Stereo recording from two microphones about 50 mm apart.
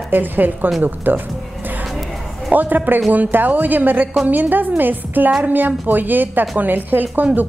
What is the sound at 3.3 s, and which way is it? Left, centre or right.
A woman's voice, right.